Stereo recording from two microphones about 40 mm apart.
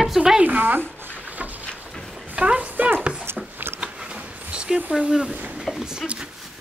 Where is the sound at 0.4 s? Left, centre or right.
Right.